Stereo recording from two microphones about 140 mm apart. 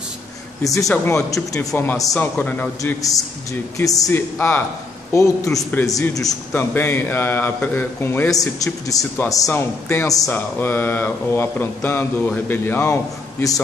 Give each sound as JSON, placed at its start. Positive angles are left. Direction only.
{"t": 1.0, "sound": "a man's voice", "side_deg": 20}
{"t": 2.8, "sound": "a man's voice", "side_deg": 25}